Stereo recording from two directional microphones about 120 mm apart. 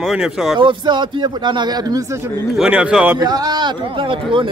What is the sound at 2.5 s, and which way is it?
Speech, 5° right (ahead or behind).